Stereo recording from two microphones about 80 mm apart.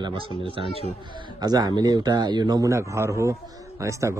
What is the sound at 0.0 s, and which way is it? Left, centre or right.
Speech, right.